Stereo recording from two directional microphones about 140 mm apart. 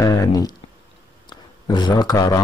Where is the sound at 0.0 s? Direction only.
25° left (ahead or behind).